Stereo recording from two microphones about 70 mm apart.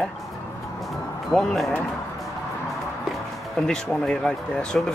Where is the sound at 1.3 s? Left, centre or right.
Centre.